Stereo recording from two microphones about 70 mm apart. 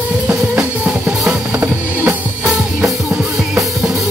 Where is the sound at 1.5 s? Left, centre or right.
Centre.